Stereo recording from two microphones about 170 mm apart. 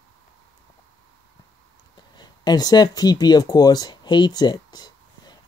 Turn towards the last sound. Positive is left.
turn(degrees=25)  # may be behind; listen again after turning